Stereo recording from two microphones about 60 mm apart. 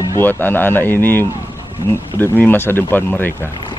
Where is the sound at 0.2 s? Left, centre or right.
Left.